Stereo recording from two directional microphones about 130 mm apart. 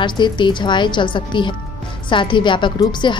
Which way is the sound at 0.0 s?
35° left (ahead or behind).